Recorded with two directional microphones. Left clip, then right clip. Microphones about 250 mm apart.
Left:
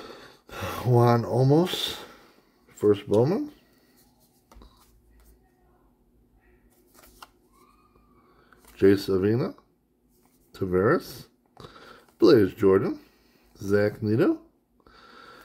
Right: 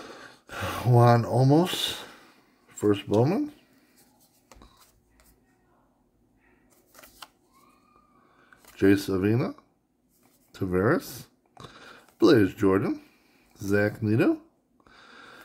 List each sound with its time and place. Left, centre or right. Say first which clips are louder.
0.0 s a sound: even; centre
8.5 s speech: left 2 dB; centre
14.9 s snort: even; centre